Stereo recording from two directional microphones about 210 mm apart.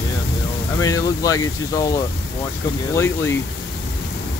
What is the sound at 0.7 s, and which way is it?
Speech, 15° left (ahead or behind).